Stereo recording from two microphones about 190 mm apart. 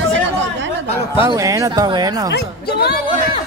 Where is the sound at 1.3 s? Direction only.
15° right (ahead or behind).